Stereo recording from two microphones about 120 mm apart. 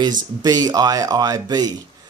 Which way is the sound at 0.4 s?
30° right (ahead or behind).